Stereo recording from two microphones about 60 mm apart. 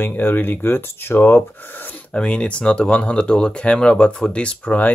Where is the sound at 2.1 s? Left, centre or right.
Centre.